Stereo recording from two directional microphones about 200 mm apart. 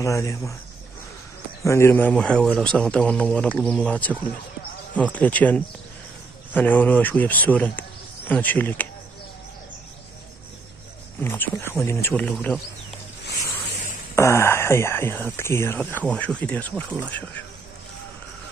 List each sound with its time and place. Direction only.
0.0 s speech: 15° left (ahead or behind)
1.6 s speech: 15° left (ahead or behind)
11.1 s speech: 10° left (ahead or behind)
14.1 s speech: 15° left (ahead or behind)